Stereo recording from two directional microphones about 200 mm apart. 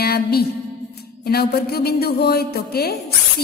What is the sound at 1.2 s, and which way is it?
A woman's voice, 50° left (ahead or behind).